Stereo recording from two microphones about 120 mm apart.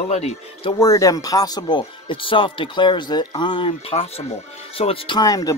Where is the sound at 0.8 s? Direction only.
30° left (ahead or behind); by 5.1 s 50° left (ahead or behind).